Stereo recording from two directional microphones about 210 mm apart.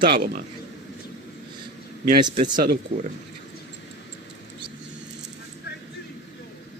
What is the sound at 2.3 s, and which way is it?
Speech, 40° right (ahead or behind).